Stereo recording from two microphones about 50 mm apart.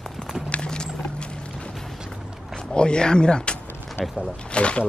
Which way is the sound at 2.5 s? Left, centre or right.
Centre.